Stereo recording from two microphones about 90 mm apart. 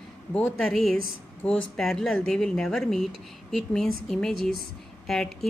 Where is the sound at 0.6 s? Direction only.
5° left (ahead or behind).